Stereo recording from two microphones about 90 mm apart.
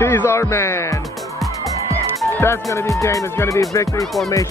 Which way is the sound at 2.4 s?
30° left (ahead or behind).